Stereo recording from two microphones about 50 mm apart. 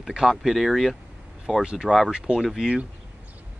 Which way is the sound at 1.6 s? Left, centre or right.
Centre.